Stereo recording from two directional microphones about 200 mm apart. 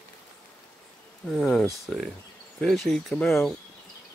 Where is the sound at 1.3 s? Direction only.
Centre (ahead or behind).